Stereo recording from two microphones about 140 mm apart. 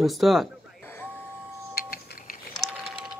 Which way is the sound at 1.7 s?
90° left.